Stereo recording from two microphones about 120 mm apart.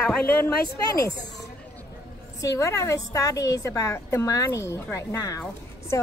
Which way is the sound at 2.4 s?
25° left (ahead or behind).